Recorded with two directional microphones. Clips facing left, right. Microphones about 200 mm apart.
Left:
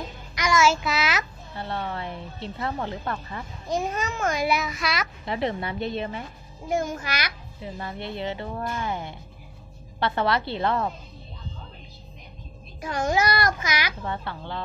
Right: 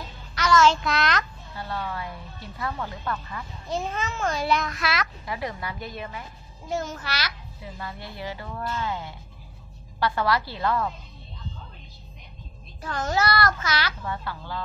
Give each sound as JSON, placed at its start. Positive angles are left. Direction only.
{"t": 0.3, "sound": "child singing", "side_deg": 15}
{"t": 1.5, "sound": "speech", "side_deg": 25}
{"t": 3.6, "sound": "a child's voice", "side_deg": 15}
{"t": 5.2, "sound": "a child's voice", "side_deg": 25}
{"t": 6.9, "sound": "a child's voice", "side_deg": 15}
{"t": 8.6, "sound": "a child's voice", "side_deg": 15}
{"t": 12.8, "sound": "a child's voice", "side_deg": 15}
{"t": 14.0, "sound": "a child's voice", "side_deg": 25}